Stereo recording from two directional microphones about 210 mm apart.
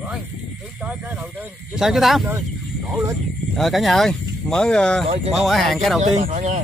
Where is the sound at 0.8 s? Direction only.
5° right (ahead or behind).